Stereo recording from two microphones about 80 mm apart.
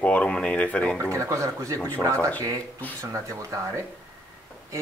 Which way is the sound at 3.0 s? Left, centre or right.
Right.